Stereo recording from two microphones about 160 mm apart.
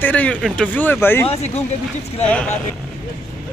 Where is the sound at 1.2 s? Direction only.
40° left (ahead or behind).